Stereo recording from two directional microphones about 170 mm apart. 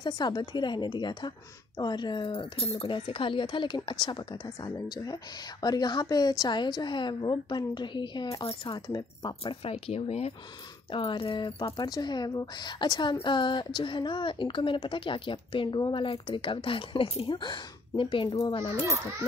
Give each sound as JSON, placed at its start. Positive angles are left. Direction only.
{"t": 0.0, "sound": "a woman's voice", "side_deg": 25}